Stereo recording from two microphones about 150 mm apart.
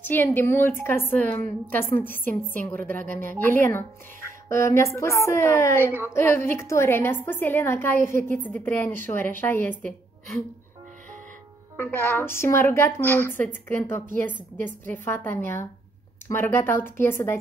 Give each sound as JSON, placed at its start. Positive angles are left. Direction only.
{"t": 0.0, "sound": "a woman's voice", "side_deg": 15}
{"t": 11.7, "sound": "a woman's voice", "side_deg": 10}